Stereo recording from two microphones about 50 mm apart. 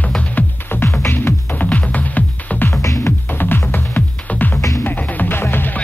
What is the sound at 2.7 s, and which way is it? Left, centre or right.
Music, left.